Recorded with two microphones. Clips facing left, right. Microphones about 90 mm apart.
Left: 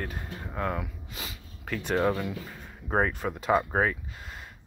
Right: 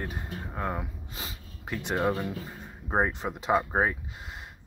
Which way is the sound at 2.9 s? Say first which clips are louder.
Even; 20° right (ahead or behind).